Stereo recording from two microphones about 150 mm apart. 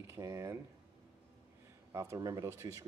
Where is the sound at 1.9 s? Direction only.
20° right (ahead or behind).